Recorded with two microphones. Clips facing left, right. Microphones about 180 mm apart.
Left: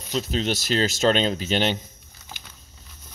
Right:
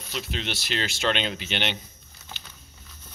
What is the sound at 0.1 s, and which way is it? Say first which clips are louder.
Speech: left 8 dB; 40° left (ahead or behind).